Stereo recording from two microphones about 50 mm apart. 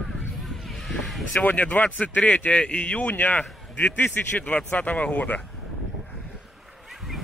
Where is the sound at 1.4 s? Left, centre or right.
Left.